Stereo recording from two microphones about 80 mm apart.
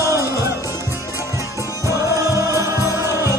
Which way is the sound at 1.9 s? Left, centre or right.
Right.